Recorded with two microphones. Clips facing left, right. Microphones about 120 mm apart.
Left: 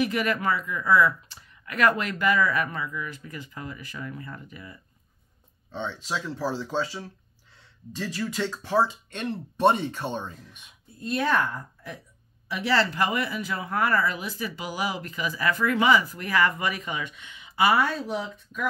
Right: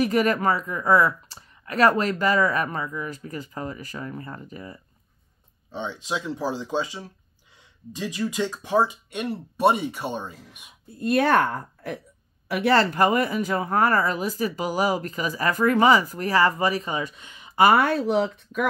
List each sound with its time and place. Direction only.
0.0 s speech: 40° right (ahead or behind)
5.7 s speech: 15° right (ahead or behind)
11.0 s speech: 65° right (ahead or behind)